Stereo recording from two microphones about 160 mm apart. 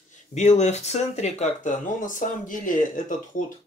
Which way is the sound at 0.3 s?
45° left (ahead or behind).